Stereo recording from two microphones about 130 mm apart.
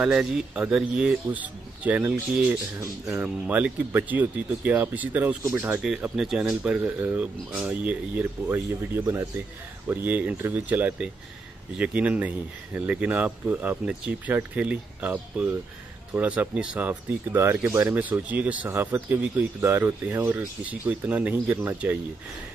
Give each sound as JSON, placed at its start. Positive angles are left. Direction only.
{"t": 0.0, "sound": "speech", "side_deg": -5}
{"t": 2.8, "sound": "speech", "side_deg": -20}
{"t": 3.4, "sound": "speech", "side_deg": -10}